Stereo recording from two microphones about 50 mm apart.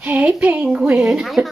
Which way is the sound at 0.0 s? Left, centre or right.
Right.